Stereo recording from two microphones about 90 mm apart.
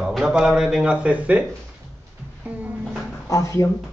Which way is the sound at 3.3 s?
40° left (ahead or behind).